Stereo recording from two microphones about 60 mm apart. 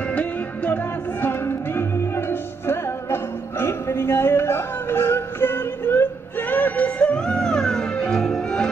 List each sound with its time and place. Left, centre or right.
0.1 s music: left
1.2 s music: left
6.5 s music: left; by 8.6 s centre